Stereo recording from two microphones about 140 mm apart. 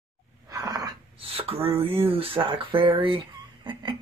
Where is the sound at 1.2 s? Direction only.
45° right (ahead or behind).